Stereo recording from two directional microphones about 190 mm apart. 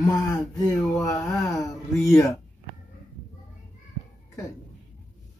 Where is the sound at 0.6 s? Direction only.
20° left (ahead or behind).